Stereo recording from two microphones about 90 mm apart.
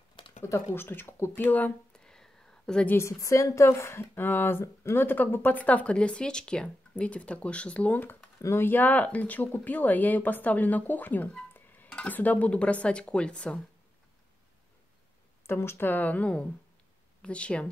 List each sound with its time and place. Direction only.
0.5 s speech: 25° left (ahead or behind)
2.0 s a sound: 5° left (ahead or behind)
2.9 s speech: 35° left (ahead or behind); by 13.6 s 10° left (ahead or behind)
15.4 s speech: 30° left (ahead or behind); by 17.6 s 10° left (ahead or behind)